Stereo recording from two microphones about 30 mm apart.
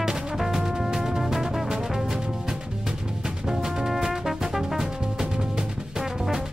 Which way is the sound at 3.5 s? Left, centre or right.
Centre.